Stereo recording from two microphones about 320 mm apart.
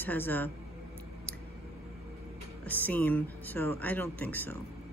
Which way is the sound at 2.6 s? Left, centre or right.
Centre.